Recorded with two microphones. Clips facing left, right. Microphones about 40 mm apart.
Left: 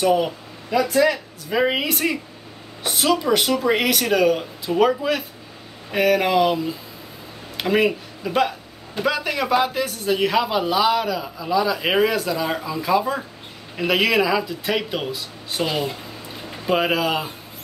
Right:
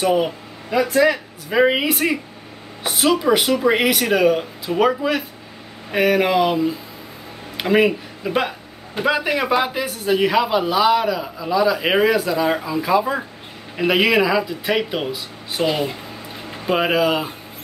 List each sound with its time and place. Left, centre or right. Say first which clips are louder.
0.0 s a man's voice: right 1 dB; centre